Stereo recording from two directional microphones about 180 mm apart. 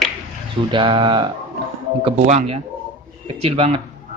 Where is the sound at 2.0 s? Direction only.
35° right (ahead or behind).